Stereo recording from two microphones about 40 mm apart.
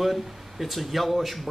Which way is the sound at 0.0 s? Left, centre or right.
Centre.